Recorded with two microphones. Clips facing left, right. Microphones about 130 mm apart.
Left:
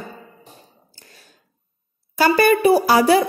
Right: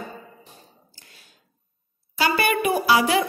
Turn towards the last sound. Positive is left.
turn(degrees=40)  # may be behind; listen again after turning